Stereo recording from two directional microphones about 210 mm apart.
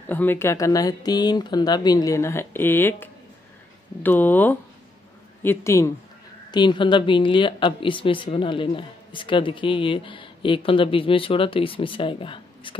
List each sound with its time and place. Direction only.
0.0 s speech: 10° left (ahead or behind); by 12.7 s 25° left (ahead or behind)